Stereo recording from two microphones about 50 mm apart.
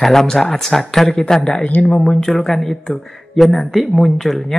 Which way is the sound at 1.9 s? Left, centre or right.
Left.